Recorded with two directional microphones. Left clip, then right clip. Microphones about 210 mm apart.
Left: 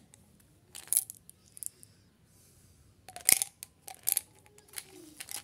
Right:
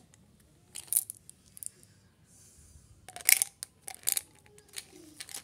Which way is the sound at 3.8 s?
5° left (ahead or behind).